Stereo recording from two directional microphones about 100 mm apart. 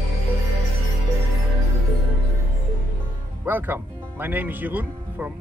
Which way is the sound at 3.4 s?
20° right (ahead or behind).